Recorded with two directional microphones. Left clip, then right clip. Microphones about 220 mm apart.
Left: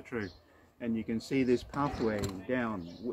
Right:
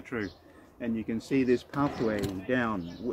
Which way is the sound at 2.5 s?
30° right (ahead or behind).